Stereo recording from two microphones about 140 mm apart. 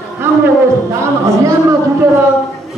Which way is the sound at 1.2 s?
20° right (ahead or behind).